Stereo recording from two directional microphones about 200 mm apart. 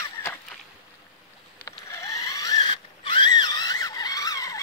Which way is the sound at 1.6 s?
15° left (ahead or behind).